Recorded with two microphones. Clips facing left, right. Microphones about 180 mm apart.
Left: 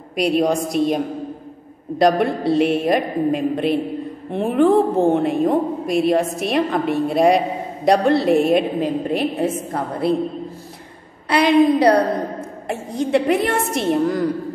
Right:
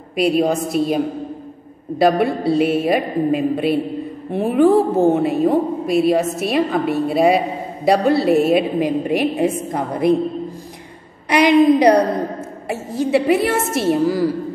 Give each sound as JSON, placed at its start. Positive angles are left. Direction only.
{"t": 0.1, "sound": "a woman's voice", "side_deg": -5}
{"t": 11.2, "sound": "a woman's voice", "side_deg": -15}
{"t": 12.6, "sound": "a woman's voice", "side_deg": -5}